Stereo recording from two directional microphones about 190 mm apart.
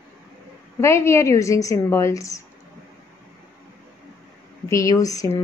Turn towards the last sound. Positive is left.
turn(degrees=15)  # may be behind; listen again after turning